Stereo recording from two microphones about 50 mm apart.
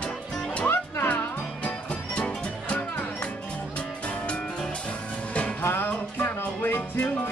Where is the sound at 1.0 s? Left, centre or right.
Left.